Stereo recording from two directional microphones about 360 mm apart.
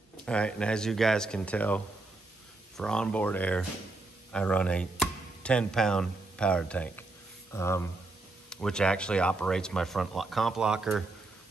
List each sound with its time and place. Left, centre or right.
0.2 s speech: centre
2.8 s speech: centre